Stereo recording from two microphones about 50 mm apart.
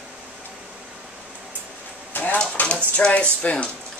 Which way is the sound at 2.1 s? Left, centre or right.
Left.